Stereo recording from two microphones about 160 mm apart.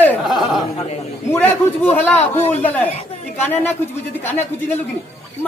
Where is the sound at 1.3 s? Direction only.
10° left (ahead or behind).